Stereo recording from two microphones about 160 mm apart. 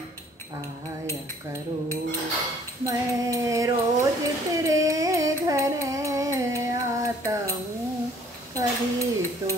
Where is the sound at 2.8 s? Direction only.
20° right (ahead or behind).